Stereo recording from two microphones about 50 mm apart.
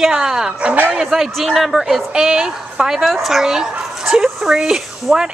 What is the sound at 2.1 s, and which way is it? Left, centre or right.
Speech, centre.